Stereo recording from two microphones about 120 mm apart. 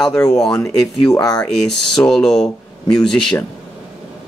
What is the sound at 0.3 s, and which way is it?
Speech, 5° left (ahead or behind).